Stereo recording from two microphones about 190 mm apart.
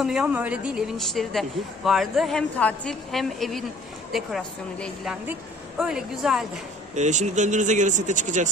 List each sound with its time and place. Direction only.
0.0 s a woman's voice: 5° right (ahead or behind)
7.0 s speech: 40° right (ahead or behind)